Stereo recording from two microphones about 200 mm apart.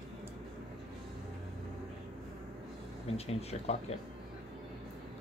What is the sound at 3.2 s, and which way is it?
Speech, 30° left (ahead or behind).